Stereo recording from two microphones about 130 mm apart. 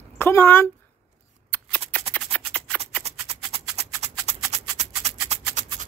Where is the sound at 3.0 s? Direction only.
55° right (ahead or behind).